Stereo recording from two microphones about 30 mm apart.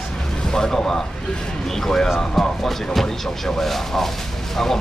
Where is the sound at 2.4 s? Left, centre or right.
Centre.